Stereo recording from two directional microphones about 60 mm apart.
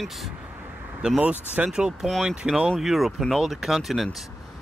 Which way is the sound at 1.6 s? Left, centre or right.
Centre.